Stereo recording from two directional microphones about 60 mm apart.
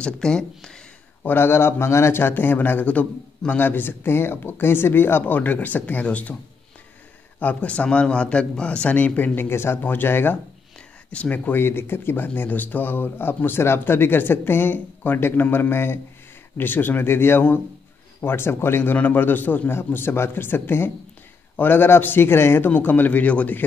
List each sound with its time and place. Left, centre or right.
0.0 s speech: centre
1.2 s speech: left
3.5 s speech: left
7.3 s a man's voice: left
11.1 s a man's voice: left